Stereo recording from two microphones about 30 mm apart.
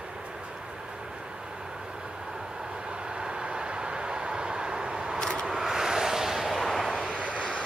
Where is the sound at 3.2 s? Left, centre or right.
Right; by 6.6 s centre.